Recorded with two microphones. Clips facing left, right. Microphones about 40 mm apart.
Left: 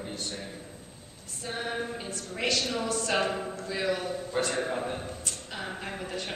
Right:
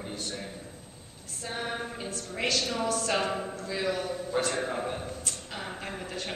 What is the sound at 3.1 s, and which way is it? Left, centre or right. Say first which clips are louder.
A man's voice: left 1 dB; centre.